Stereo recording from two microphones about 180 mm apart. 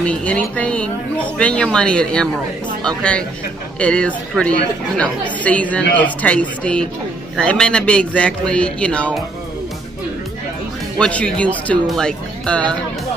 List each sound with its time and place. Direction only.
0.0 s a man's voice: 5° left (ahead or behind)
11.0 s speech: 5° left (ahead or behind)